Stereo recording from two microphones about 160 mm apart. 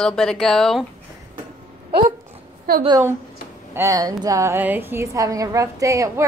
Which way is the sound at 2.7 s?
70° right (ahead or behind).